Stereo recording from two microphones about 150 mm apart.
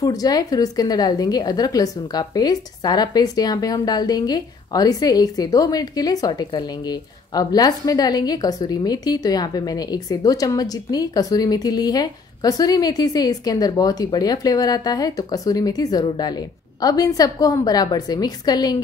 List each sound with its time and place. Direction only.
0.0 s a woman's voice: 25° left (ahead or behind)